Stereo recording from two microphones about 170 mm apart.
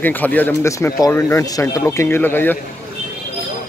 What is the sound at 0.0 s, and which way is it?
Speech, 10° left (ahead or behind).